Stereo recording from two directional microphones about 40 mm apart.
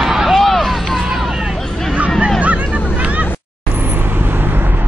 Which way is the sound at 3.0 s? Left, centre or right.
Right.